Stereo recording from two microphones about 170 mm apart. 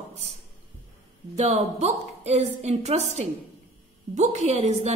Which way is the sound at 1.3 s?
40° right (ahead or behind).